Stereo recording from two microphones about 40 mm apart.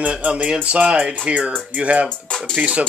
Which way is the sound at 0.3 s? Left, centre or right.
Right.